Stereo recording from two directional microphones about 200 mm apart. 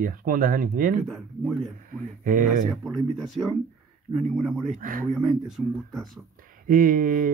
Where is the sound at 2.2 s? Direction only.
40° right (ahead or behind).